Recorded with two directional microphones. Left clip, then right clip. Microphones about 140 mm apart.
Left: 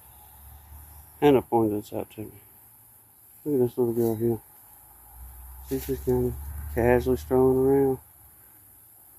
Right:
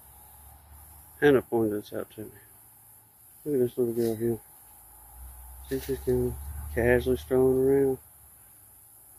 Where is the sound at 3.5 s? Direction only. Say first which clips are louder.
Left 2 dB; 15° left (ahead or behind).